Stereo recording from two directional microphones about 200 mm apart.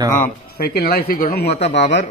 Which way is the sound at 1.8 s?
35° left (ahead or behind).